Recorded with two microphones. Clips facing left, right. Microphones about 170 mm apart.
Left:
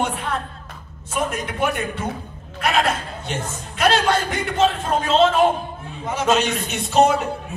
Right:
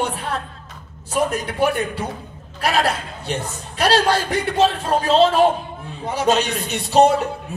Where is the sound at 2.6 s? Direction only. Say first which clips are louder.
Right 1 dB; 35° right (ahead or behind).